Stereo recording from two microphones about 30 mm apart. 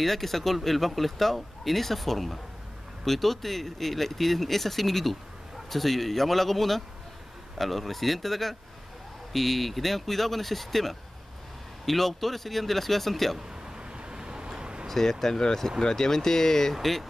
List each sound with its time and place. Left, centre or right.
0.0 s speech: centre
13.7 s vehicle: right
14.9 s speech: centre
16.7 s speech: centre